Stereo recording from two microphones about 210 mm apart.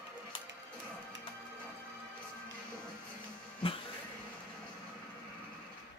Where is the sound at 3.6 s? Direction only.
25° left (ahead or behind).